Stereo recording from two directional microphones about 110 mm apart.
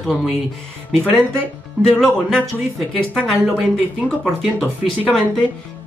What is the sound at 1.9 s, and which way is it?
A man's voice, 5° left (ahead or behind).